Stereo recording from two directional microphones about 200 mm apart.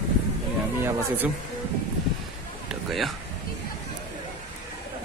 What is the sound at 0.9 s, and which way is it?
Speech, 10° right (ahead or behind).